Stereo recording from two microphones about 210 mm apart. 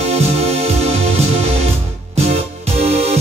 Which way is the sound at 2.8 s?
30° right (ahead or behind).